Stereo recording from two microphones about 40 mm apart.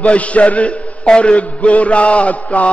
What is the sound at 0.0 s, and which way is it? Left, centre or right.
Mantra, left.